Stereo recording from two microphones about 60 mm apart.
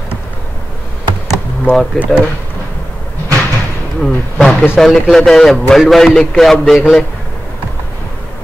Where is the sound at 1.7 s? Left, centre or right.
Left.